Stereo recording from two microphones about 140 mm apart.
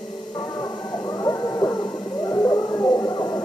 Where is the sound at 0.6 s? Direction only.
25° left (ahead or behind).